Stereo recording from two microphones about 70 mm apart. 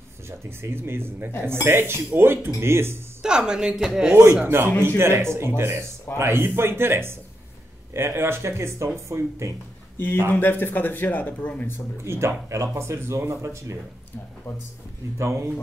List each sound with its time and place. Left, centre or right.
0.4 s speech: right
3.2 s speech: centre
4.5 s speech: right
10.3 s speech: left
12.0 s speech: right
15.1 s speech: right